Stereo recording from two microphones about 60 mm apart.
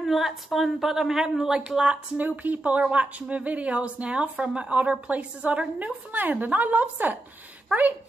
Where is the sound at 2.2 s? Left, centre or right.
Right.